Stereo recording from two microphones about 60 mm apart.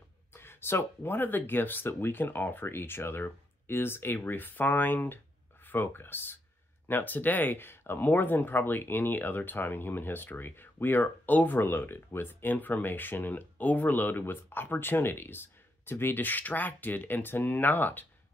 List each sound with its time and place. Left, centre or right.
0.3 s speech: left